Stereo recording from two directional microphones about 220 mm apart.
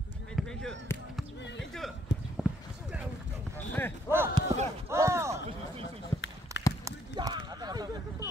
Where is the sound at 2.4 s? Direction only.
5° right (ahead or behind).